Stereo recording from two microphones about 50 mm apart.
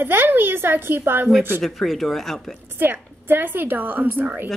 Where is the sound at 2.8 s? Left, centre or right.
Right.